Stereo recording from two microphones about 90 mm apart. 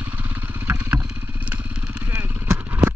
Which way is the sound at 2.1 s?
25° right (ahead or behind).